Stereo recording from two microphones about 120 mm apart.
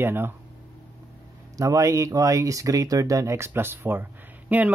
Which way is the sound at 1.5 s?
25° right (ahead or behind).